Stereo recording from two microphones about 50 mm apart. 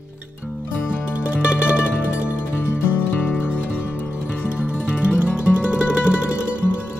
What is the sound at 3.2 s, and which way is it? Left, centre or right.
Music, left.